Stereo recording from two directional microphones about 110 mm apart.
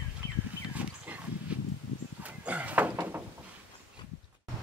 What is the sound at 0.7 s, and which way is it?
Pig, 15° right (ahead or behind).